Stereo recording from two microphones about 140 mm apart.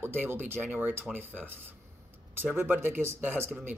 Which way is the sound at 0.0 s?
15° right (ahead or behind).